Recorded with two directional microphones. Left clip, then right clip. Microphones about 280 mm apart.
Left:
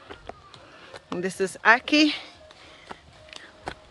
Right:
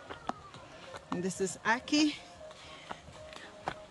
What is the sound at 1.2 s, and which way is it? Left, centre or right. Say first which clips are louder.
Speech: left 8 dB; centre.